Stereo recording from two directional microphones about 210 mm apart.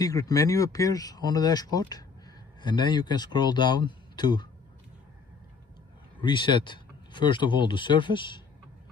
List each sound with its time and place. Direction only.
0.0 s speech: 15° left (ahead or behind)
6.2 s speech: 20° left (ahead or behind)